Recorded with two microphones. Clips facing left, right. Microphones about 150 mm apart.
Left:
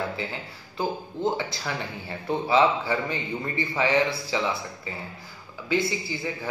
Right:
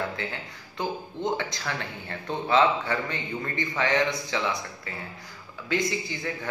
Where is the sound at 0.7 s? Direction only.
5° left (ahead or behind).